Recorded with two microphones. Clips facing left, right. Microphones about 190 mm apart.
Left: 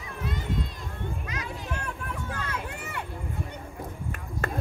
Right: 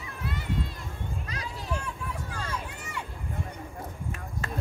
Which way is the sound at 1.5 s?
60° left (ahead or behind).